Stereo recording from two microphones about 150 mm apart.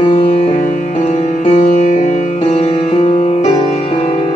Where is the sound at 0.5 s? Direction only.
50° left (ahead or behind).